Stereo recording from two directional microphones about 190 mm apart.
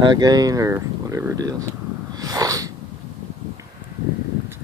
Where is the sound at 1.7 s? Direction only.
20° right (ahead or behind).